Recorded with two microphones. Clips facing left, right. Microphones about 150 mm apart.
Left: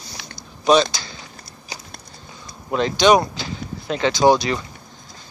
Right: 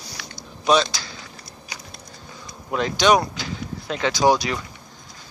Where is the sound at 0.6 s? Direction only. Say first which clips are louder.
Left 3 dB; centre (ahead or behind).